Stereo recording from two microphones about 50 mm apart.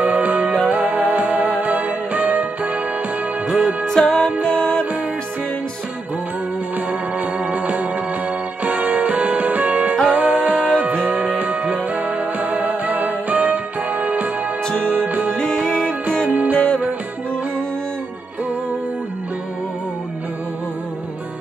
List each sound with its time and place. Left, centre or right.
0.0 s music: right
3.4 s music: centre
4.0 s music: left
6.9 s music: right
15.3 s music: centre
16.3 s music: right